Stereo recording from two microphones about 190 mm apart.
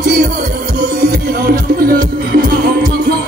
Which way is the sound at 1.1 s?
50° right (ahead or behind).